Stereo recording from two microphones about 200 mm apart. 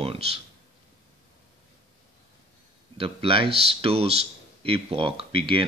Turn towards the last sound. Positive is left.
turn(degrees=-25)  # may be behind; listen again after turning